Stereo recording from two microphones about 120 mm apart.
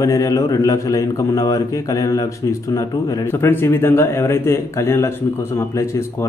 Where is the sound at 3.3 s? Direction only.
20° left (ahead or behind).